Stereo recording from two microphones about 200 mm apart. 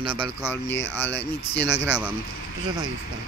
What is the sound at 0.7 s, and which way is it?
Speech, 60° left (ahead or behind).